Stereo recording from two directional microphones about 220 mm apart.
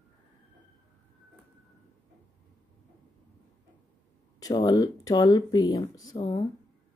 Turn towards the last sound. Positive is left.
turn(degrees=20)  # may be behind; listen again after turning